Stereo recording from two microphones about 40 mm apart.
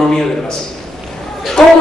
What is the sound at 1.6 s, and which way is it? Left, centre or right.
Speech, centre.